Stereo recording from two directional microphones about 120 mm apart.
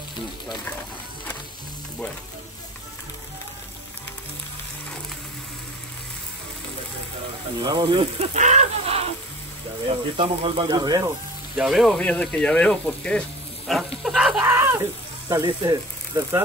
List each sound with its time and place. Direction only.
7.6 s speech: 40° right (ahead or behind)
8.4 s speech: 75° right (ahead or behind); by 11.1 s 35° right (ahead or behind)
11.5 s speech: centre (ahead or behind)
13.7 s sizzle: centre (ahead or behind)
14.4 s frying: 20° right (ahead or behind)